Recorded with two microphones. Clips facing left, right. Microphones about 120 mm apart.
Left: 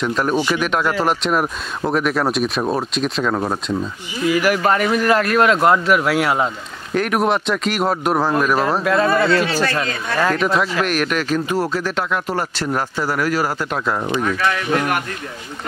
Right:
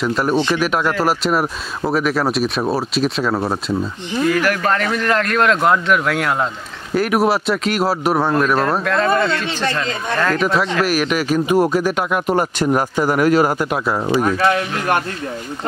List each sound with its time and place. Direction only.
0.0 s a man's voice: centre (ahead or behind)
4.3 s a man's voice: 10° left (ahead or behind); by 14.0 s 10° right (ahead or behind)
14.2 s speech: 35° right (ahead or behind)